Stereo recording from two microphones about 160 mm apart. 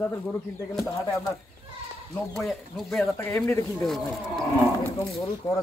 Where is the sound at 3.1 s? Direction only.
15° left (ahead or behind).